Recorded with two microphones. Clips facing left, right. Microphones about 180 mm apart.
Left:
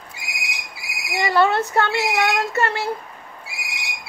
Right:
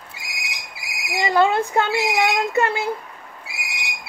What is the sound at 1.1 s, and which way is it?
Speech, 15° right (ahead or behind).